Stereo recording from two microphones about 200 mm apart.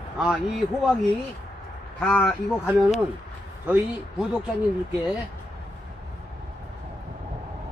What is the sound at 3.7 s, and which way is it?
Speech, 5° right (ahead or behind).